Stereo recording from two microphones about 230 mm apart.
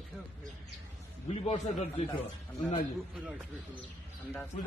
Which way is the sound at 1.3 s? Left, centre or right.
Left.